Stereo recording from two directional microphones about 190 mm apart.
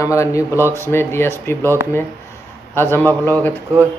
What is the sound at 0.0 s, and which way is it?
Speech, 15° left (ahead or behind).